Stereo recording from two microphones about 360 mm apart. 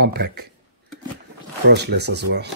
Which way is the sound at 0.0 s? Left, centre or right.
Right.